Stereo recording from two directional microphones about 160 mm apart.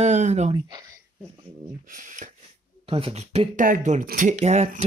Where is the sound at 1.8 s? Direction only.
55° right (ahead or behind).